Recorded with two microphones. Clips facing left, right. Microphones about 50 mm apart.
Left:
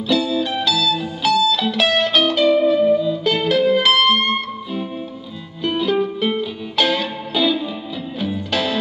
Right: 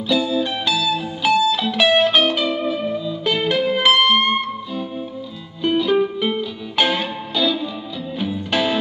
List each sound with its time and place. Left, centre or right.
0.1 s music: centre
5.9 s music: centre
6.2 s music: centre
6.8 s music: centre
7.3 s music: centre
8.5 s music: centre